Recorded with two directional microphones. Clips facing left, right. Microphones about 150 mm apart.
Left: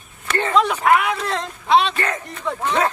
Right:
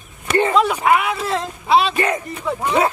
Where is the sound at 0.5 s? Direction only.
5° right (ahead or behind).